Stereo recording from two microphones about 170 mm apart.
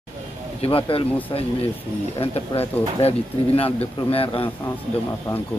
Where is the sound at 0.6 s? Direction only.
35° left (ahead or behind).